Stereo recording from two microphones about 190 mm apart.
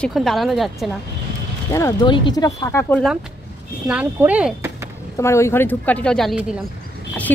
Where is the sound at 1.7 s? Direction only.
15° left (ahead or behind).